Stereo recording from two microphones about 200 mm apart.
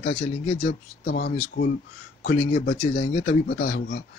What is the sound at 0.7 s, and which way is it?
Speech, 50° left (ahead or behind).